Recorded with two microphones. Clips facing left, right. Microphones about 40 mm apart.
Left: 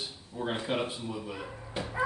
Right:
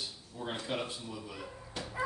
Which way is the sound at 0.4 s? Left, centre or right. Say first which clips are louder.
Left 5 dB; left.